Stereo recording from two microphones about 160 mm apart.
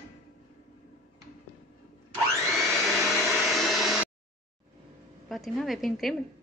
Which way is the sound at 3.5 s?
Centre (ahead or behind).